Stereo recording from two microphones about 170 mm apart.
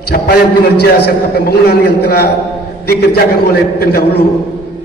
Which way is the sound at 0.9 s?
70° left (ahead or behind).